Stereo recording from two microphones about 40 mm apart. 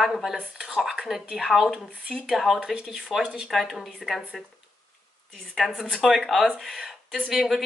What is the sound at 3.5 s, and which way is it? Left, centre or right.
Speech, centre.